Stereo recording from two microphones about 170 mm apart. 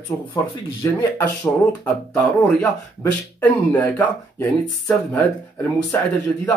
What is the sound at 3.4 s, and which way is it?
Speech, 10° left (ahead or behind).